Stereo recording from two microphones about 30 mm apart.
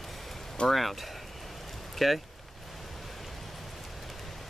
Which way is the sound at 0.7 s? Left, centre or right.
Centre.